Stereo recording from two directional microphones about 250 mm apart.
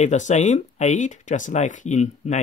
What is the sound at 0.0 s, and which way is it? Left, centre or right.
Speech, left.